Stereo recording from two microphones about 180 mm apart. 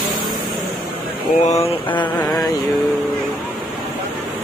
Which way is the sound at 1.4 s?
35° left (ahead or behind).